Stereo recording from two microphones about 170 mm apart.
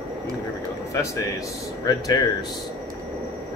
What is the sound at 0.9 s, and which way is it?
Speech, 20° left (ahead or behind).